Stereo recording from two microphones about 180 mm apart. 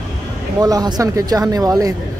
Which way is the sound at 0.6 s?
20° right (ahead or behind).